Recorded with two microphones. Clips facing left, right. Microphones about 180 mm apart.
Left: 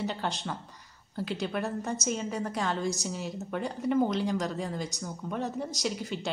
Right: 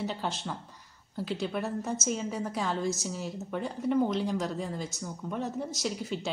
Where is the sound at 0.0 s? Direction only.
Centre (ahead or behind).